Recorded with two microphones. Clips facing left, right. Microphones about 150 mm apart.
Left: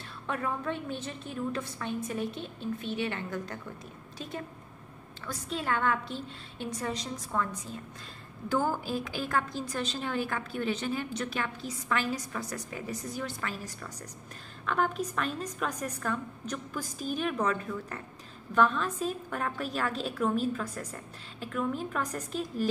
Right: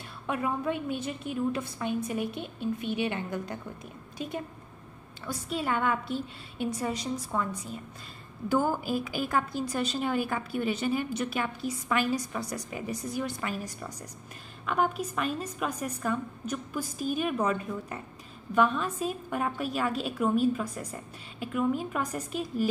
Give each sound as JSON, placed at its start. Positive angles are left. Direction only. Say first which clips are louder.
{"t": 0.3, "sound": "a woman's voice", "louder": "right 3 dB", "side_deg": -10}